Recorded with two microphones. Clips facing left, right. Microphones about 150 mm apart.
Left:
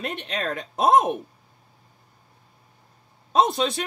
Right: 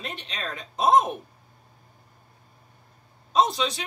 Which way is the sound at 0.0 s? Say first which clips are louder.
Left 6 dB; 55° left (ahead or behind).